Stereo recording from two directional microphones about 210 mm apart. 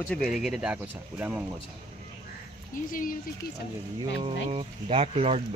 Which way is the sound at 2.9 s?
40° left (ahead or behind).